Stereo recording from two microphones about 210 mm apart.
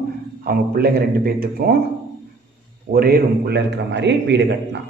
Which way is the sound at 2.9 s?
45° right (ahead or behind).